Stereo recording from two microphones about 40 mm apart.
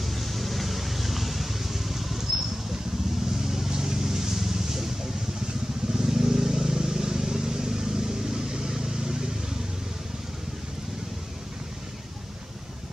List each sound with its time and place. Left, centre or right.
0.0 s vehicle: centre